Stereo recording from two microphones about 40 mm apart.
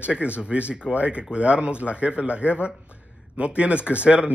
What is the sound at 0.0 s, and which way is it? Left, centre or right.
Speech, right.